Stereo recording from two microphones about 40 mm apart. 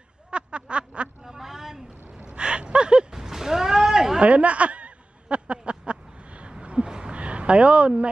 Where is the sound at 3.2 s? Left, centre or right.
Centre.